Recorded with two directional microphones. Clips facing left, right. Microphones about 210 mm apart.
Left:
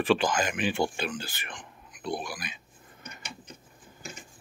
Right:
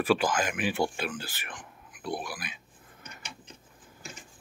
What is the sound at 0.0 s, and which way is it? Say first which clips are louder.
Speech: left 1 dB; 5° right (ahead or behind).